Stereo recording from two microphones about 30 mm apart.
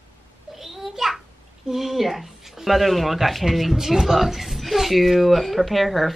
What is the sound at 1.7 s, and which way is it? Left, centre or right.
A child's voice, centre.